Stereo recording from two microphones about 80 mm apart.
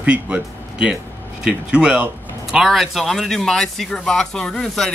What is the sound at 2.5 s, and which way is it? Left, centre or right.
Speech, centre.